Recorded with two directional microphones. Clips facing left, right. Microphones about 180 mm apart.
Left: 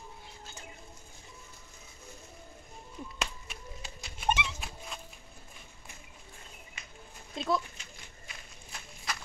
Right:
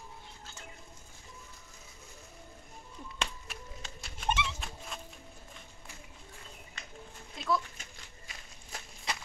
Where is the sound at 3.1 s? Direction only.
5° left (ahead or behind).